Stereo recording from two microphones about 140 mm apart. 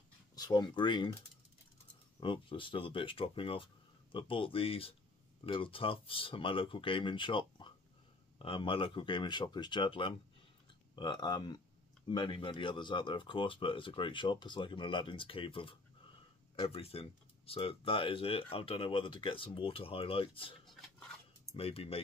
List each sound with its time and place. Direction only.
0.4 s speech: 30° left (ahead or behind)
2.1 s speech: 35° left (ahead or behind)
20.6 s a sound: centre (ahead or behind)
21.5 s speech: 45° left (ahead or behind)